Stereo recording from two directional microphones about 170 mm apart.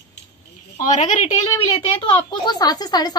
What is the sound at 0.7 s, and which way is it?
Speech, 45° left (ahead or behind).